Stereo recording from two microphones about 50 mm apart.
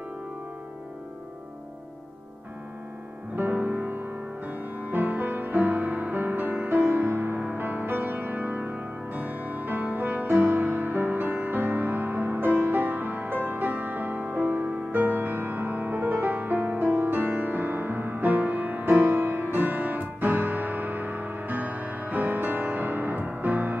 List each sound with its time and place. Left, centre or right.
3.3 s music: right
7.1 s music: right